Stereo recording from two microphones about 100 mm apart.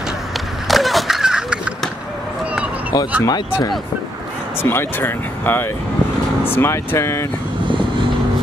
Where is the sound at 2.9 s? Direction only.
40° left (ahead or behind).